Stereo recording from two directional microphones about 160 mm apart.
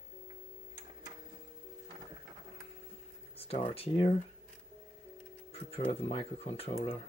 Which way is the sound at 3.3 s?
35° left (ahead or behind).